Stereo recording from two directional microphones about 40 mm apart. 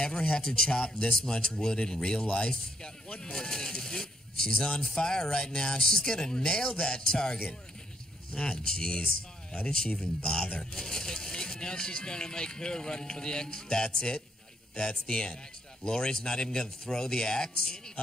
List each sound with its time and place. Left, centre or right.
0.0 s a man's voice: left